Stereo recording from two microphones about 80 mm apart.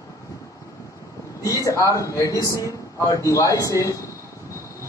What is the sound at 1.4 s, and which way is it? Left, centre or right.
A man's voice, left.